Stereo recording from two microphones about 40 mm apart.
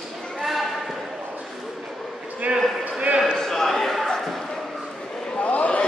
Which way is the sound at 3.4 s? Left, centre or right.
Centre.